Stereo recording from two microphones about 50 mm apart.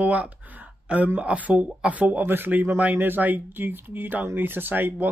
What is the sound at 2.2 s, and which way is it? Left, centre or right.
Speech, right.